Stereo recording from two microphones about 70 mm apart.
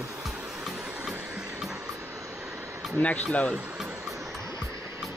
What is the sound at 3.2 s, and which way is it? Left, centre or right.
Speech, centre.